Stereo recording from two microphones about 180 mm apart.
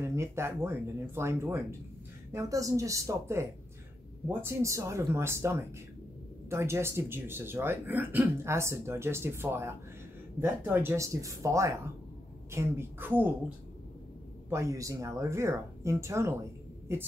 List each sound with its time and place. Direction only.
0.0 s speech: 15° right (ahead or behind)
14.5 s speech: 15° right (ahead or behind)